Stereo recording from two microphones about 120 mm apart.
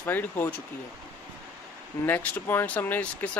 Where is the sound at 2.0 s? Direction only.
15° left (ahead or behind).